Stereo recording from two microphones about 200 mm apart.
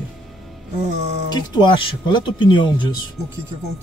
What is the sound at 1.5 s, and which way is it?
Speech, 25° left (ahead or behind).